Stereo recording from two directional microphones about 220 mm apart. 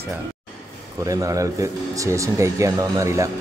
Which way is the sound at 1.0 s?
15° right (ahead or behind).